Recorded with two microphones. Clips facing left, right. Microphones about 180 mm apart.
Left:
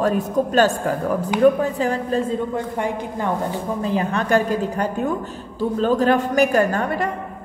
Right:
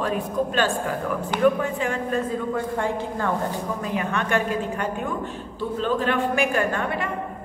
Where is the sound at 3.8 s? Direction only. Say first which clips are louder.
Left 7 dB; 35° left (ahead or behind).